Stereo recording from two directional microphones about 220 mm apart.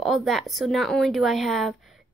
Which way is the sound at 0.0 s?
Centre (ahead or behind).